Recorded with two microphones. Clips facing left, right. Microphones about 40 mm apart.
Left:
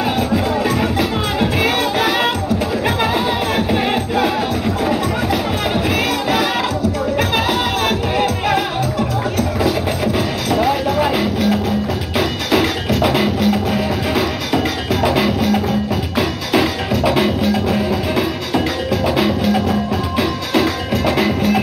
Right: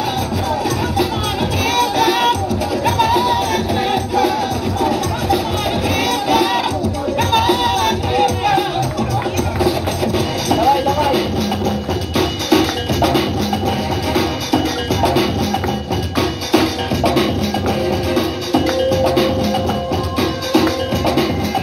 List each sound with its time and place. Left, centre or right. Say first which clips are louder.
0.9 s music: even; left
7.2 s music: right 5 dB; centre
10.5 s music: right 3 dB; centre
12.4 s music: right 2 dB; centre